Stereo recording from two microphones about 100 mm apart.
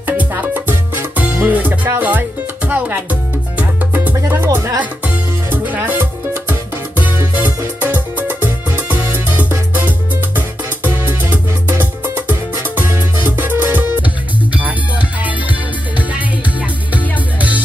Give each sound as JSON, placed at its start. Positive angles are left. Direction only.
{"t": 0.0, "sound": "music", "side_deg": -15}
{"t": 4.2, "sound": "speech", "side_deg": -25}
{"t": 4.7, "sound": "music", "side_deg": -15}
{"t": 16.9, "sound": "music", "side_deg": -15}